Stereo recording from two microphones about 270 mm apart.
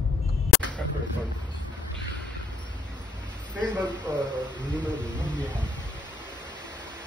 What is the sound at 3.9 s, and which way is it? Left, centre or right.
Speech, centre.